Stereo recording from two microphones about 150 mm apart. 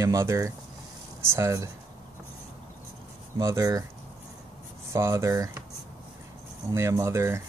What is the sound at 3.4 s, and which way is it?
Speech, 20° right (ahead or behind).